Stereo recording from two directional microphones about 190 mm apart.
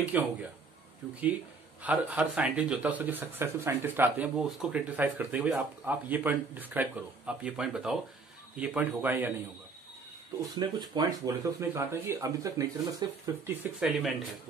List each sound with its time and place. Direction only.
0.1 s speech: 5° right (ahead or behind)
10.3 s speech: 20° right (ahead or behind); by 14.1 s 5° right (ahead or behind)